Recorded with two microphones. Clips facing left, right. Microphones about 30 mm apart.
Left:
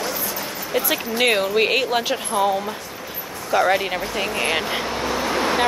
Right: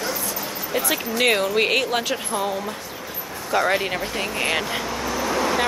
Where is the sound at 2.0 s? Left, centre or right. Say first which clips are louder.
Left 4 dB; centre.